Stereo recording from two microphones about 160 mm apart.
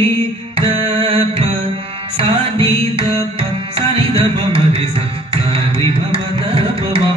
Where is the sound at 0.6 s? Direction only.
40° right (ahead or behind).